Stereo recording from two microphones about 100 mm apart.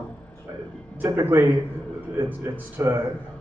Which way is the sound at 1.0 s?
30° right (ahead or behind).